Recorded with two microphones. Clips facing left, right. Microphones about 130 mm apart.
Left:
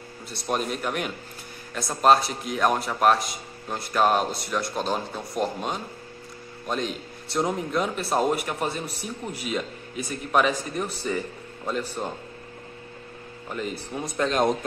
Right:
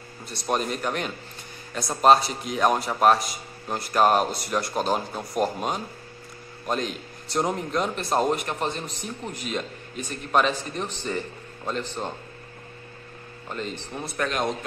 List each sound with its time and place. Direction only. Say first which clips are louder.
0.3 s a man's voice: right 1 dB; centre (ahead or behind)
13.5 s speech: left 1 dB; 10° left (ahead or behind)